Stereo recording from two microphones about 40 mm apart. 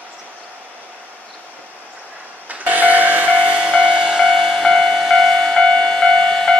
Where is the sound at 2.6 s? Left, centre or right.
Right.